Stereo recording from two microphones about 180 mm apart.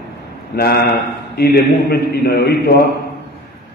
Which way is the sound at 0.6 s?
60° left (ahead or behind).